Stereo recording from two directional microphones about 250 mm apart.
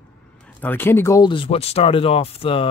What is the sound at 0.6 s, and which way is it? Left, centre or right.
Speech, centre.